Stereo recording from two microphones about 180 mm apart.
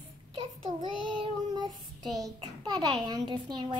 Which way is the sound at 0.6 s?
25° right (ahead or behind).